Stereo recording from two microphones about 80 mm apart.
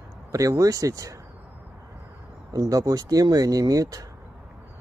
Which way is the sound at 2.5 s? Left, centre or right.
Right.